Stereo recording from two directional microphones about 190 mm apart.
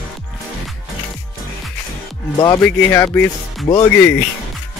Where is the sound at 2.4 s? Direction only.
20° left (ahead or behind).